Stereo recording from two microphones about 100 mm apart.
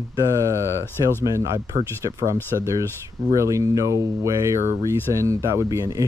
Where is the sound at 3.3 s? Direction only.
30° right (ahead or behind).